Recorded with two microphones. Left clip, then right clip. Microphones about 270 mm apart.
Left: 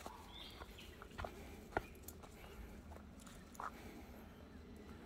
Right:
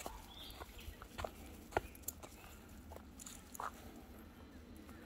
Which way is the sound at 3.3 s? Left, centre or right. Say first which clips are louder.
Right 3 dB; right.